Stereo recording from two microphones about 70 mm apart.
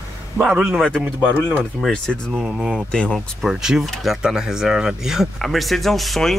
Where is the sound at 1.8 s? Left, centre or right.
Centre.